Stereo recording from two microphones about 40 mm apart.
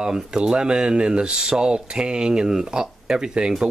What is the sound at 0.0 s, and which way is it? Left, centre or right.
Speech, centre.